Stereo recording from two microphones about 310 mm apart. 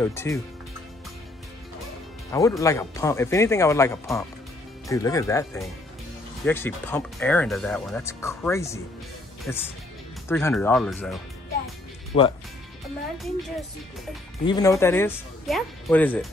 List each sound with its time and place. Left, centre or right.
0.0 s speech: centre
2.3 s speech: centre
12.1 s speech: centre
14.4 s speech: centre